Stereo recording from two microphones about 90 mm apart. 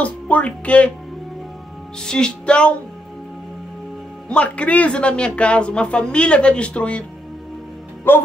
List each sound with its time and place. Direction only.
0.0 s speech: 15° left (ahead or behind)
2.0 s speech: 10° left (ahead or behind)
4.3 s speech: 10° left (ahead or behind)